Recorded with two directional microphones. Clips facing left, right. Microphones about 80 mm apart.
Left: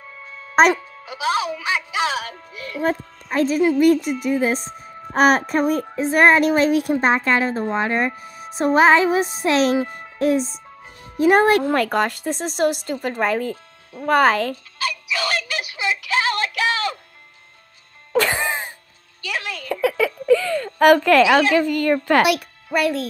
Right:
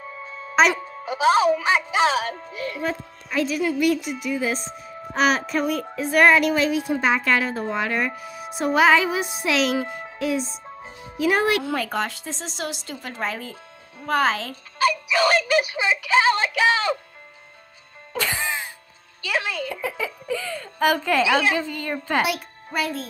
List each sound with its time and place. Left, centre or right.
0.6 s speech: left
1.0 s speech: right
2.8 s speech: left
7.2 s speech: left
10.1 s music: left
11.1 s speech: left
15.1 s a sound: right
18.1 s music: left
19.7 s a woman's voice: left